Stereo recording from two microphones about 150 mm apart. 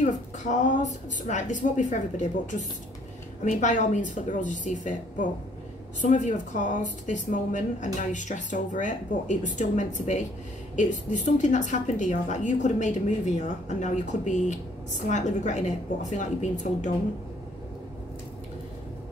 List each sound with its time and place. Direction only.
0.0 s a woman's voice: 55° left (ahead or behind)
3.4 s a woman's voice: 55° left (ahead or behind)